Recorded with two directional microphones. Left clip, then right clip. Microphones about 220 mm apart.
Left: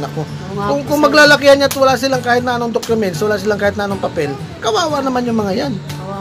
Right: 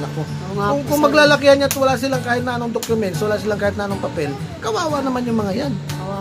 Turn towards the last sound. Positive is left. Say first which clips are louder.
# left 4 dB
turn(degrees=20)  # may be behind; listen again after turning